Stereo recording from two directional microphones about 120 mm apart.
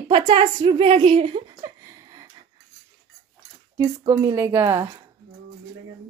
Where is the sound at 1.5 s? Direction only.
30° right (ahead or behind).